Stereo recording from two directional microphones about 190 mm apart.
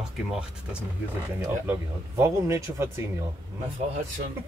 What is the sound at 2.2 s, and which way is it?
Speech, 15° right (ahead or behind).